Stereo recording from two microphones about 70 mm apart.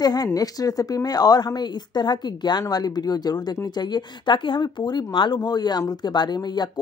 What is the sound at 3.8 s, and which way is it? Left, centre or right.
Speech, left.